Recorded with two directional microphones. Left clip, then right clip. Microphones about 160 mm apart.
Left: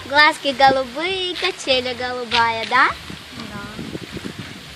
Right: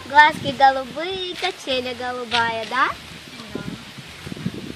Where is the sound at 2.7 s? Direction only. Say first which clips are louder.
Left 5 dB; 35° left (ahead or behind).